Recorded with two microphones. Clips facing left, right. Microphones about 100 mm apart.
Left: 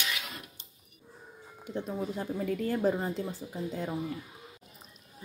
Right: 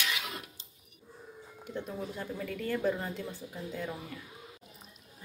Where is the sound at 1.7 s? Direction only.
30° left (ahead or behind).